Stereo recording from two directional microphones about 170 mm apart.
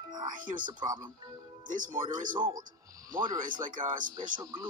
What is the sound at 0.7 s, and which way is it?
Speech, 25° right (ahead or behind).